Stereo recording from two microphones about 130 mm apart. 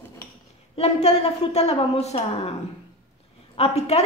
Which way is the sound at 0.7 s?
55° left (ahead or behind).